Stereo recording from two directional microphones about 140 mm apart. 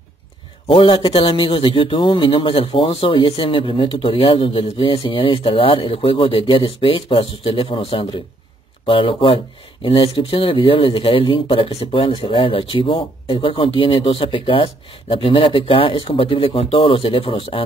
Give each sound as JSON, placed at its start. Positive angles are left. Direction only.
{"t": 0.7, "sound": "a man's voice", "side_deg": 40}